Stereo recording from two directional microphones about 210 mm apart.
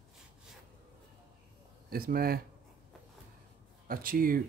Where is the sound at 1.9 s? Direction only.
45° right (ahead or behind).